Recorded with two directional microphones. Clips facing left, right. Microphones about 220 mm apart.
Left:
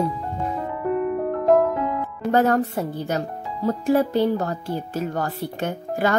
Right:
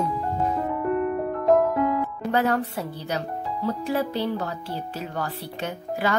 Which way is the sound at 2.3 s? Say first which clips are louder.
Left 5 dB; 45° left (ahead or behind).